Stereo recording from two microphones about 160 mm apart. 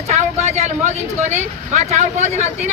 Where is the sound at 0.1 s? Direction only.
45° right (ahead or behind).